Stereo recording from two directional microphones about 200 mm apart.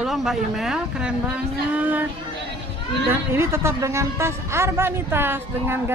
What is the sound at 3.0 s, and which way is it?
Speech, 10° right (ahead or behind).